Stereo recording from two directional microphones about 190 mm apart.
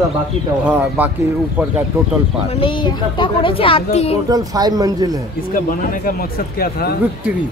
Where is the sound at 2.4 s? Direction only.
30° left (ahead or behind).